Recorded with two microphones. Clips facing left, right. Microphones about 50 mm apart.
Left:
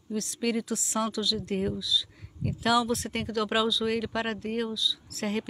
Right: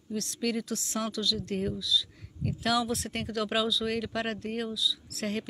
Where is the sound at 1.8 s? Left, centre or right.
Centre.